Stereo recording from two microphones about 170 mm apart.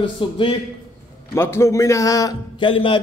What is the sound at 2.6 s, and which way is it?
Speech, 30° left (ahead or behind).